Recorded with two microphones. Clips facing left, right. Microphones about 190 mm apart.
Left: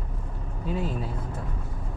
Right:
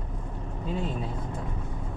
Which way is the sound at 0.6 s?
5° left (ahead or behind).